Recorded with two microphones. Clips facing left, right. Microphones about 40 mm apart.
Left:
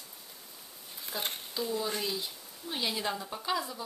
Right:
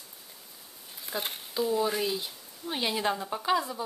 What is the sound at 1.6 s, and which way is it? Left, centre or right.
Speech, centre.